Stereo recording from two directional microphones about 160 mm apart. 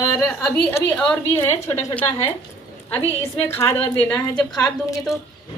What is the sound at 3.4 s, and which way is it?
Speech, 15° left (ahead or behind).